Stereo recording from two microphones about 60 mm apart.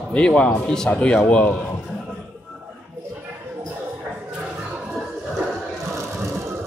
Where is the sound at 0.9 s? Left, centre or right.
Left.